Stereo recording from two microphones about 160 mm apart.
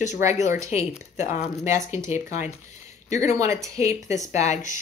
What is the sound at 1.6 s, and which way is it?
Speech, 20° right (ahead or behind).